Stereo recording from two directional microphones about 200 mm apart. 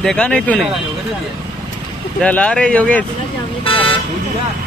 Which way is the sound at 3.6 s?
25° left (ahead or behind).